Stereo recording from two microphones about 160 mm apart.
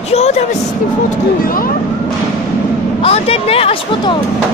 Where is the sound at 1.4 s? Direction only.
65° left (ahead or behind).